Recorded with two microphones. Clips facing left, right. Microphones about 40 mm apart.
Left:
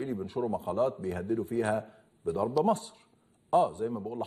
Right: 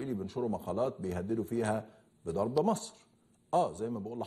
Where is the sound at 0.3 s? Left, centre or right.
Centre.